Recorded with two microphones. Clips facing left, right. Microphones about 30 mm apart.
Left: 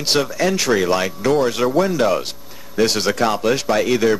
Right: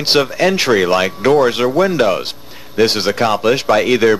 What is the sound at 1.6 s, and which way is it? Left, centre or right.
Speech, centre.